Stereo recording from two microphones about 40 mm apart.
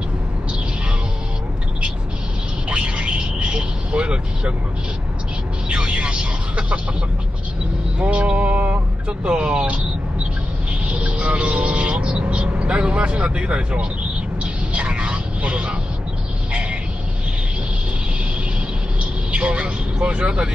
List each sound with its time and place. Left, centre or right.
2.7 s vehicle: right
5.7 s a sound: right
8.0 s vehicle: right
8.5 s speech: right
10.9 s vehicle: right
19.3 s speech: right